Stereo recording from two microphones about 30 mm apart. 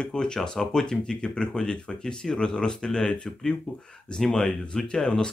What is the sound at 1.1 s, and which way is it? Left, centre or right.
A man's voice, left.